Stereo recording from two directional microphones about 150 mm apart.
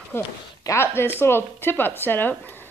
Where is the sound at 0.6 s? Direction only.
20° left (ahead or behind).